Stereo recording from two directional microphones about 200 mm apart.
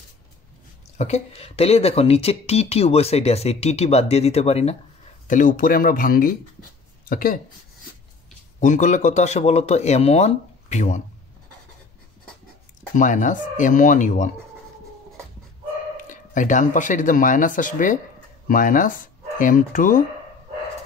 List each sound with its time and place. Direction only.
0.9 s speech: 35° left (ahead or behind)
8.5 s speech: 40° left (ahead or behind)
12.9 s speech: 40° left (ahead or behind)
16.0 s speech: 40° left (ahead or behind)